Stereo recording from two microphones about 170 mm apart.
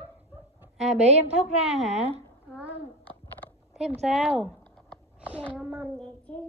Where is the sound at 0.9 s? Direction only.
40° right (ahead or behind).